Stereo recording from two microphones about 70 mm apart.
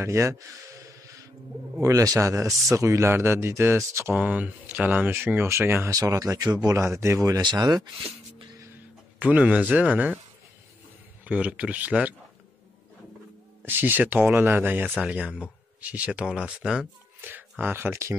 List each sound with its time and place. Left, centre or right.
0.0 s a man's voice: right
4.1 s speech: centre
5.3 s a man's voice: right
5.9 s speech: right
6.8 s a man's voice: right
7.4 s speech: right
9.2 s speech: centre
11.2 s speech: centre
13.7 s speech: right; by 16.8 s centre
17.2 s speech: right